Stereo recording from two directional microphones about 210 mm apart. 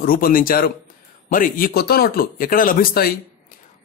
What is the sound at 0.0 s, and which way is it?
Speech, 45° left (ahead or behind).